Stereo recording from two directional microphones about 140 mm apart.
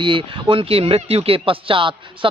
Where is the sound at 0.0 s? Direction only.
35° right (ahead or behind).